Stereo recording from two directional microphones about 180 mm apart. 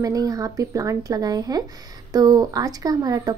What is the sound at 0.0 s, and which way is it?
Speech, 20° right (ahead or behind).